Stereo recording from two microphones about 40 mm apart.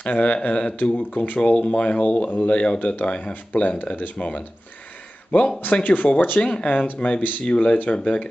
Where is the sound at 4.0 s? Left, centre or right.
Left.